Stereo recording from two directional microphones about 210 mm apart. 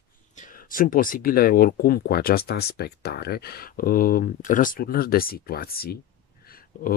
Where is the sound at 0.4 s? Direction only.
40° left (ahead or behind).